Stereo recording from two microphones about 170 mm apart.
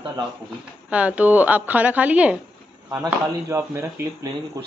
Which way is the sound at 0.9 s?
10° right (ahead or behind).